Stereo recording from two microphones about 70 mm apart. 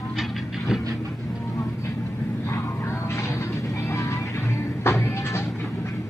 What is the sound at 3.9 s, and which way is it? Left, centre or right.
Music, left.